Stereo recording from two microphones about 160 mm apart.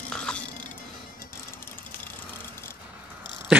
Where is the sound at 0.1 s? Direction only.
5° left (ahead or behind).